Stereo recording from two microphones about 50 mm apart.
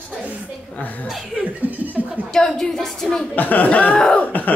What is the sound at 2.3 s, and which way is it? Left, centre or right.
Speech, centre.